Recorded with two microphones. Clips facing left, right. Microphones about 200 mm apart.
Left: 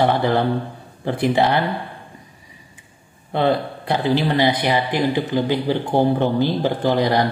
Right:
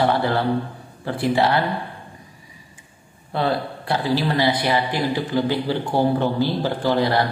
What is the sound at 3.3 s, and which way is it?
Speech, 20° left (ahead or behind).